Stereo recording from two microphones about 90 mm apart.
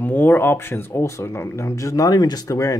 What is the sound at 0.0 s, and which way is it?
Speech, 20° left (ahead or behind).